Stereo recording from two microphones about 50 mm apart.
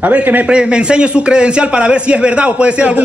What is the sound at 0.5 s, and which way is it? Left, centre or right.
A man's voice, centre.